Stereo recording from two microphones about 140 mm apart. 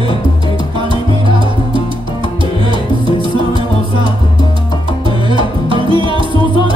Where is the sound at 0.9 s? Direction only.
35° right (ahead or behind).